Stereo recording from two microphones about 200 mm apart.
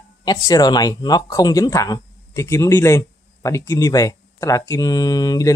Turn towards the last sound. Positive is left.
turn(degrees=20)  # may be behind; listen again after turning